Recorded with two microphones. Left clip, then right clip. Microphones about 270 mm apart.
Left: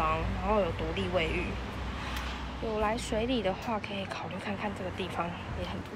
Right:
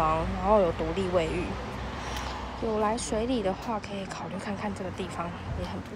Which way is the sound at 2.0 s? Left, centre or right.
Right.